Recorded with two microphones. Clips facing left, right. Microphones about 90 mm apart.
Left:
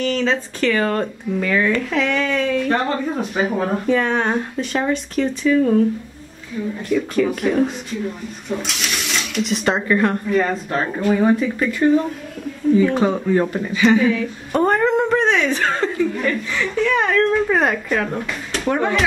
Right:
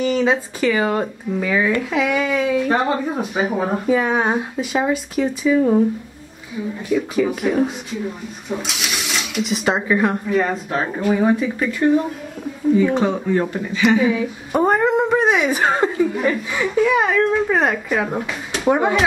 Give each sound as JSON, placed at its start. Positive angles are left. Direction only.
{"t": 0.0, "sound": "speech", "side_deg": -15}
{"t": 6.9, "sound": "speech", "side_deg": -5}
{"t": 13.8, "sound": "speech", "side_deg": -10}